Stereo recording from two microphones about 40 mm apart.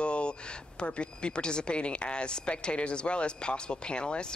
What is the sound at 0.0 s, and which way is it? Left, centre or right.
Speech, left.